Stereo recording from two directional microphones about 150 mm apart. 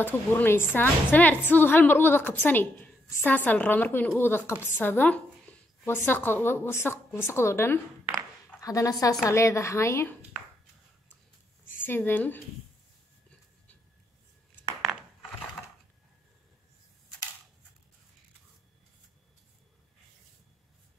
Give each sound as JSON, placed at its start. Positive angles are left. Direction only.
{"t": 0.0, "sound": "a woman's voice", "side_deg": 10}
{"t": 11.8, "sound": "a woman's voice", "side_deg": 15}